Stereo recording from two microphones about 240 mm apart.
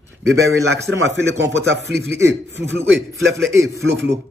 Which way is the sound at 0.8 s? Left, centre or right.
Right.